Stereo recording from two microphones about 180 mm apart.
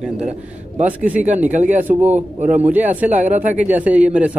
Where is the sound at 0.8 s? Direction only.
10° right (ahead or behind).